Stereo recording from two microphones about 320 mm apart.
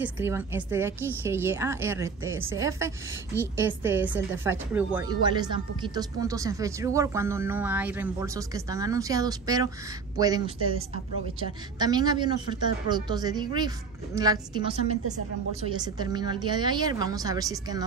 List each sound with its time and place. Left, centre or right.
0.0 s speech: centre
11.8 s speech: centre